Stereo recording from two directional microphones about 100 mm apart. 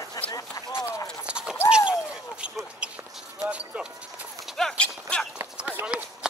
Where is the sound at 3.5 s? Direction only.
10° right (ahead or behind).